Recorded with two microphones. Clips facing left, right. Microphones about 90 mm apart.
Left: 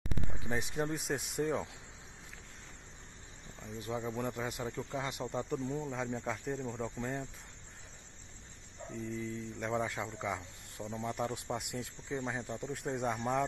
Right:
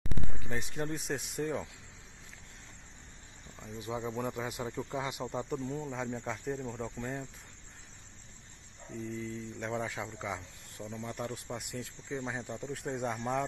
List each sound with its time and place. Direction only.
0.3 s a sound: 15° left (ahead or behind)
0.7 s speech: 5° left (ahead or behind)
3.5 s speech: 5° right (ahead or behind)
8.9 s speech: centre (ahead or behind)
10.9 s speech: 15° left (ahead or behind)
11.8 s speech: centre (ahead or behind)